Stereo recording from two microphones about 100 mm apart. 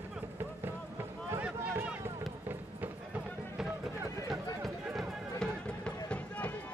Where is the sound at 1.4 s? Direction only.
15° right (ahead or behind).